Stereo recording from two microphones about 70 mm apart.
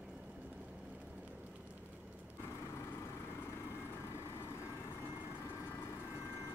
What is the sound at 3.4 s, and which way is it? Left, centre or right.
Vehicle, left.